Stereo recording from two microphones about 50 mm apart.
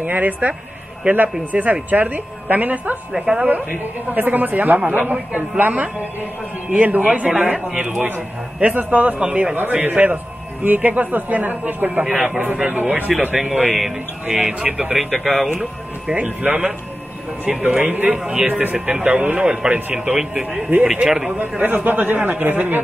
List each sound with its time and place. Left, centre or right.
0.0 s speech: right
3.1 s speech: centre
3.4 s a man's voice: right
9.2 s a man's voice: centre
9.6 s speech: right
13.2 s a man's voice: centre
14.2 s speech: right
14.6 s speech: centre
16.1 s a man's voice: right
18.1 s speech: centre
18.5 s a man's voice: right; by 19.7 s centre
19.7 s a man's voice: right
20.2 s speech: centre
21.3 s speech: right